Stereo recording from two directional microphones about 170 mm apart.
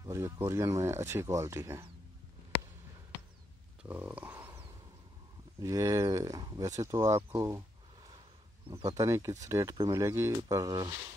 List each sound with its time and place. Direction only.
0.0 s speech: 20° right (ahead or behind)
3.8 s a sound: 10° right (ahead or behind)
5.6 s speech: 20° right (ahead or behind)
8.6 s speech: 30° right (ahead or behind)
8.9 s speech: 20° right (ahead or behind)